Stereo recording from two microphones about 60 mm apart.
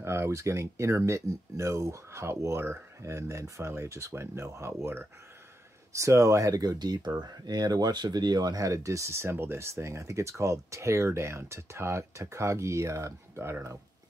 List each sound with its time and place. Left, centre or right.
0.0 s speech: right
5.9 s speech: right
8.0 s speech: right
8.4 s speech: right